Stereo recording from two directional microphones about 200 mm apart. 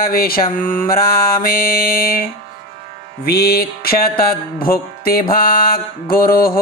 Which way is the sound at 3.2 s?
50° left (ahead or behind).